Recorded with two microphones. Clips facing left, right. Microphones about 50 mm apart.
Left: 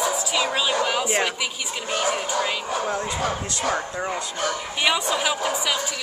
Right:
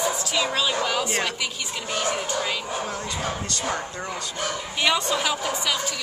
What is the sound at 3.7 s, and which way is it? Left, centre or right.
Speech, centre.